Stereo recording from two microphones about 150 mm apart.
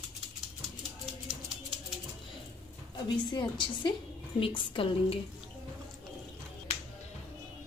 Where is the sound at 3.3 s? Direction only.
30° left (ahead or behind).